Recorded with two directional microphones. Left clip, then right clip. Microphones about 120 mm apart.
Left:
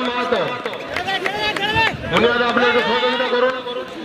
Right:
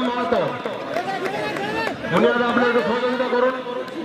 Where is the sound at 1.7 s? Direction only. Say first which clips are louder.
Left 4 dB; 25° left (ahead or behind).